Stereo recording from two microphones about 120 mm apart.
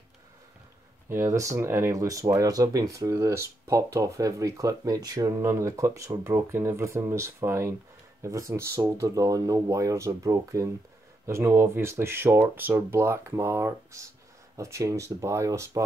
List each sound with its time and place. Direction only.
1.0 s speech: 20° right (ahead or behind)